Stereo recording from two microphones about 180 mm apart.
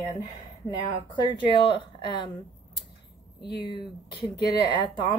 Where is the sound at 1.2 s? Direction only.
25° left (ahead or behind).